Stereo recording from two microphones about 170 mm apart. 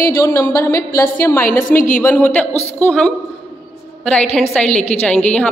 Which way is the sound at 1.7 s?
50° left (ahead or behind).